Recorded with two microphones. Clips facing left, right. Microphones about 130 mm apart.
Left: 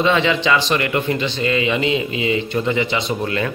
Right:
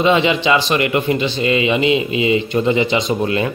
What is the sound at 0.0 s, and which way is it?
Speech, 15° right (ahead or behind).